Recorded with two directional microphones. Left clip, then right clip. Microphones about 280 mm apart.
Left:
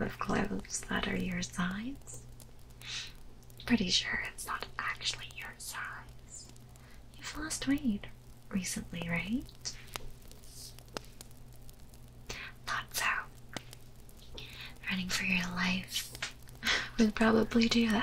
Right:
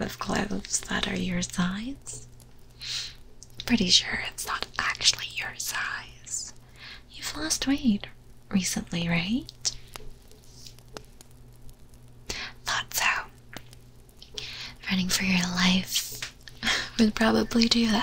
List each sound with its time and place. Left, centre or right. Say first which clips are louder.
0.0 s speech: right 4 dB; centre
3.6 s speech: right 8 dB; centre
7.2 s speech: right 9 dB; right
10.9 s a sound: left 1 dB; centre
12.3 s whispering: right 8 dB; centre
14.3 s speech: right 9 dB; centre